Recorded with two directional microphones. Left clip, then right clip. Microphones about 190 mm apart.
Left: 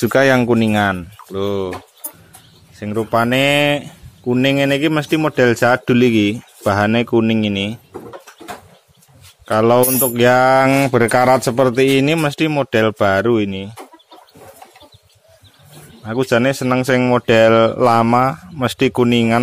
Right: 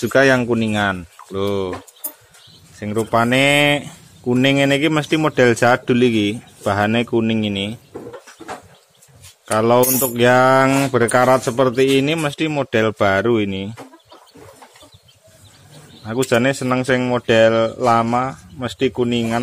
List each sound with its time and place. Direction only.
0.0 s speech: 20° left (ahead or behind); by 1.8 s centre (ahead or behind)
2.8 s speech: centre (ahead or behind)
9.5 s speech: 10° left (ahead or behind)
16.0 s speech: 10° left (ahead or behind); by 19.4 s 25° left (ahead or behind)